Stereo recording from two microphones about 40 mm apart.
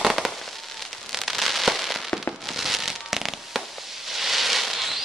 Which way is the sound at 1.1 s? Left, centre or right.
Centre.